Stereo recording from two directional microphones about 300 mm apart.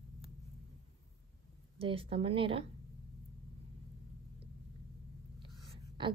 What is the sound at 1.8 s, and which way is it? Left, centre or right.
Speech, centre.